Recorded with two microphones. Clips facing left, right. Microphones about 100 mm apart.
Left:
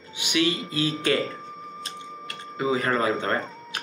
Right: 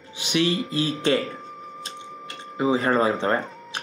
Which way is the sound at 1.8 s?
25° right (ahead or behind).